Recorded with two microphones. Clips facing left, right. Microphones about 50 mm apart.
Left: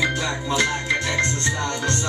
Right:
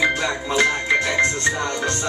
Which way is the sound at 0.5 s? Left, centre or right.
Right.